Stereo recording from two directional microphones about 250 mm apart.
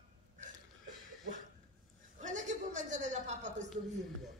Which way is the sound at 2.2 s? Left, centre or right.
Right.